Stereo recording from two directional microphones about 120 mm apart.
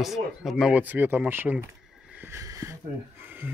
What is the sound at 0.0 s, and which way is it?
Speech, centre (ahead or behind).